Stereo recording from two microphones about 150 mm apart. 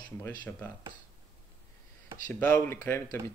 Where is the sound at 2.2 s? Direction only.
15° left (ahead or behind).